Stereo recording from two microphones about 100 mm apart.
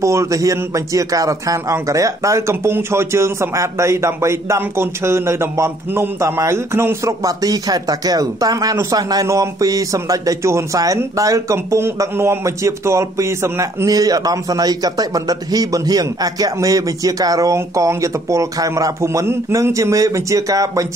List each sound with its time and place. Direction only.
0.0 s a man's voice: 30° right (ahead or behind)
7.2 s speech: 40° right (ahead or behind)